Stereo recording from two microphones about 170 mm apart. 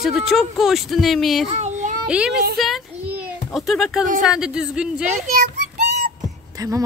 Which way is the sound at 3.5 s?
Centre (ahead or behind).